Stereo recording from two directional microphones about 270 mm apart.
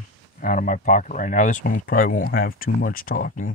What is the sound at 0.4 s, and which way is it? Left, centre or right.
Speech, left.